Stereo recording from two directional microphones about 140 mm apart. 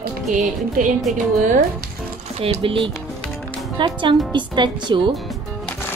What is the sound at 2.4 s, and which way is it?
Speech, 40° right (ahead or behind).